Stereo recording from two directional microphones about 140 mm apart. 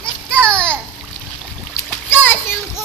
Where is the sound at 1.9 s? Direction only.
15° left (ahead or behind).